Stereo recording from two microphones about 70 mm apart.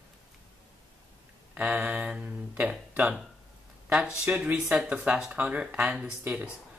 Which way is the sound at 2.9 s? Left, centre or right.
Right.